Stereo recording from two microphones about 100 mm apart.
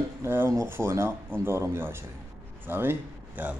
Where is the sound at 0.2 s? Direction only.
25° right (ahead or behind).